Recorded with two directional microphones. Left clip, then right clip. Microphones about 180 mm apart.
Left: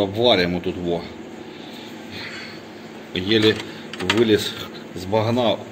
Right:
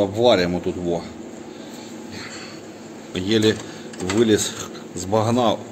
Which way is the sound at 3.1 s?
10° right (ahead or behind).